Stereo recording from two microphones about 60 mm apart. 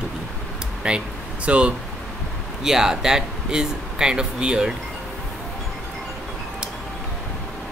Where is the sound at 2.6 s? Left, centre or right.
Centre.